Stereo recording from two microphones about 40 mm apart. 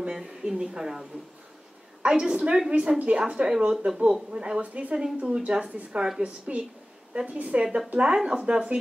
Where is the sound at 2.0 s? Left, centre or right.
Right.